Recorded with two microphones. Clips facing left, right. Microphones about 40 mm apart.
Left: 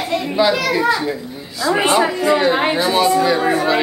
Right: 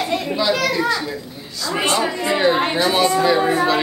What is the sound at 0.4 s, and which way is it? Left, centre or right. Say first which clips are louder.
A child's voice: left 4 dB; centre.